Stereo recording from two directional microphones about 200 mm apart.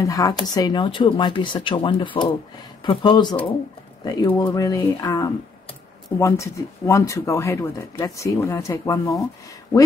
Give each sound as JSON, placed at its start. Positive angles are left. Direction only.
{"t": 0.0, "sound": "speech", "side_deg": 15}